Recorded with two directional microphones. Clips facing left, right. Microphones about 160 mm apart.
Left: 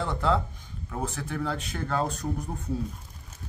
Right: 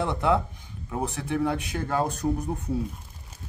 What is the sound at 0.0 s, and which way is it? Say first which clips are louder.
Speech: right 2 dB; 15° right (ahead or behind).